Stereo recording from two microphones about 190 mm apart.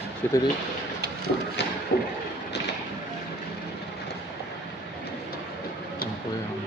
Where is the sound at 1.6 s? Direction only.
70° left (ahead or behind).